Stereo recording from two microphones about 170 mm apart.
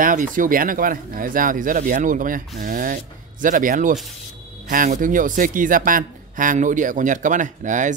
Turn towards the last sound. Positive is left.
turn(degrees=-45)  # may be behind; listen again after turning